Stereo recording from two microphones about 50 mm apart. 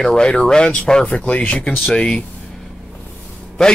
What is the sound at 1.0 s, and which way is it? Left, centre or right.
Speech, left.